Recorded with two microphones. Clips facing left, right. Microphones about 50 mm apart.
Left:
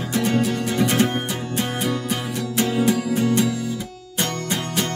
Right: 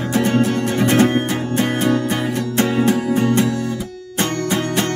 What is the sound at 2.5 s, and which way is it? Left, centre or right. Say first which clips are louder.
Music: right 3 dB; right.